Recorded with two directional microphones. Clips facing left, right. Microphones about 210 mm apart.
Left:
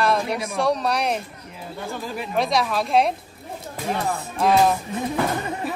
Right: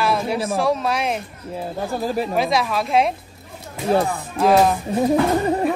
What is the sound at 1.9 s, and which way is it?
Speech, 35° right (ahead or behind).